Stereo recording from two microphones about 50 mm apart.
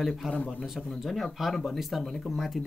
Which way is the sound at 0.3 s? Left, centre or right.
Left.